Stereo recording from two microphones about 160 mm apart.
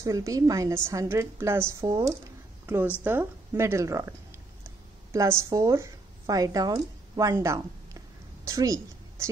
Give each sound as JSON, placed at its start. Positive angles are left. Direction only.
{"t": 0.0, "sound": "a woman's voice", "side_deg": -20}